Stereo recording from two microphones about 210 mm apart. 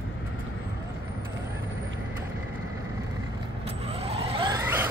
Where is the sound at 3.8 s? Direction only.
25° right (ahead or behind).